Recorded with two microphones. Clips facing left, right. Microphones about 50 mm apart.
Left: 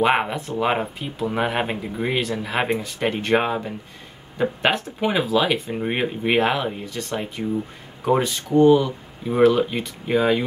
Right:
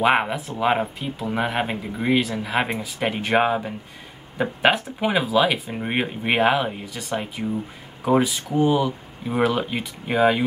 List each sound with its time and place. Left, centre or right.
0.0 s speech: centre